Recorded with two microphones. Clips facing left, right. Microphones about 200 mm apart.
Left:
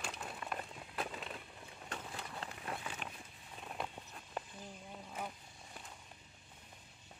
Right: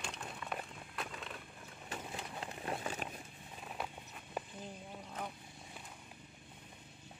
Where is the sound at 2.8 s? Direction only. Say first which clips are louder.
Right 5 dB; 40° right (ahead or behind).